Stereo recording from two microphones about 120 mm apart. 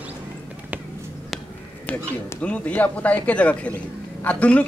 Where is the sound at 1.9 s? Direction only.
10° left (ahead or behind).